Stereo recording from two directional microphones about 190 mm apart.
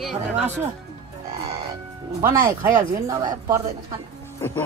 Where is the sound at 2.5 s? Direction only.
20° right (ahead or behind).